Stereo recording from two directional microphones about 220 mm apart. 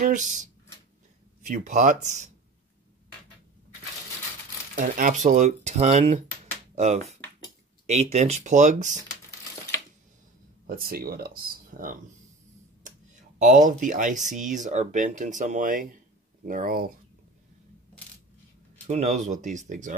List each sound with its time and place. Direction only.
0.0 s speech: 35° right (ahead or behind)
4.7 s speech: 35° right (ahead or behind)
10.7 s speech: 40° right (ahead or behind)
18.9 s speech: 30° right (ahead or behind)